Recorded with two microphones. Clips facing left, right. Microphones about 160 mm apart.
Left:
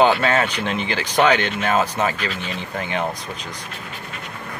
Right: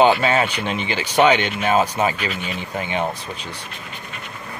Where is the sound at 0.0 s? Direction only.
5° right (ahead or behind).